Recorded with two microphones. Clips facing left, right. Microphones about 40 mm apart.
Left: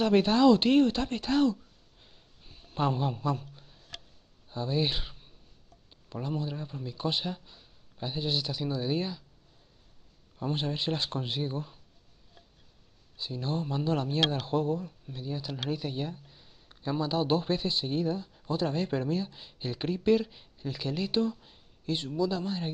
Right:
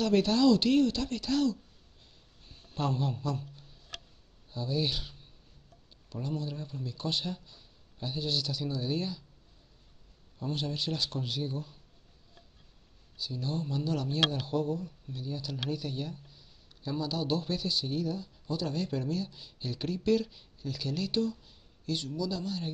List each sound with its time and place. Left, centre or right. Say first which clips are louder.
0.0 s speech: left 3 dB; left
2.4 s a man's voice: left 4 dB; centre
10.4 s a man's voice: left 3 dB; left
13.2 s speech: left 2 dB; left